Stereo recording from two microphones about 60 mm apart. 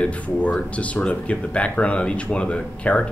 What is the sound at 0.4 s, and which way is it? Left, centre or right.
Speech, left.